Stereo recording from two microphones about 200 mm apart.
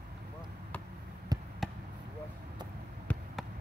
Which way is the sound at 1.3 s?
20° right (ahead or behind).